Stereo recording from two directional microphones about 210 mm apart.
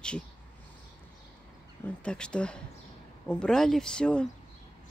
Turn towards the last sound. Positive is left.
turn(degrees=5)  # may be behind; listen again after turning